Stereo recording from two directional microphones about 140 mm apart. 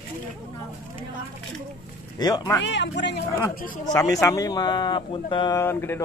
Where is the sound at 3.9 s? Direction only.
25° left (ahead or behind).